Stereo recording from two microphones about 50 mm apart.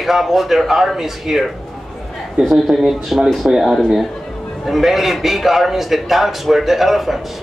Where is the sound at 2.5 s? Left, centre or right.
Centre.